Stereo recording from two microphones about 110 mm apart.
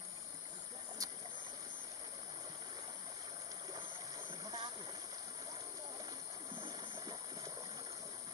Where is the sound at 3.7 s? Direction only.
40° right (ahead or behind).